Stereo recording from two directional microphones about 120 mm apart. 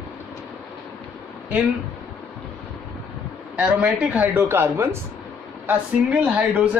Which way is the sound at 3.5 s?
10° right (ahead or behind).